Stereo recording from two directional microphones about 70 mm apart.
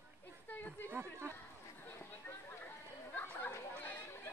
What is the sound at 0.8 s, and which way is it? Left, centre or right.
Speech, right.